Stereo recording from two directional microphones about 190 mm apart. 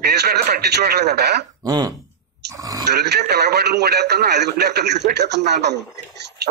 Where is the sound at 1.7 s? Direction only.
20° right (ahead or behind).